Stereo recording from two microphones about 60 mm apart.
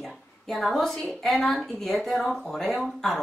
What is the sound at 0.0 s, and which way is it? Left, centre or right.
A woman's voice, centre.